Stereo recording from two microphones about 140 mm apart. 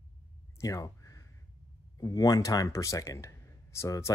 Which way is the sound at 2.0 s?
25° left (ahead or behind).